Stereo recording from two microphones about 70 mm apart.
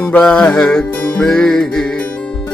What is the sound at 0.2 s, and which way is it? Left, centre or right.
Music, centre.